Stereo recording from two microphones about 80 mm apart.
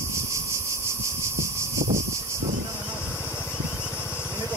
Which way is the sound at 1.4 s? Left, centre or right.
Right.